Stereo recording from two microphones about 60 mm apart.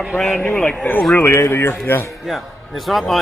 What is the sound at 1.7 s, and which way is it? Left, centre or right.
Speech, left.